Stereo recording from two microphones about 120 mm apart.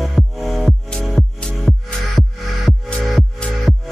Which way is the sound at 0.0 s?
Centre (ahead or behind).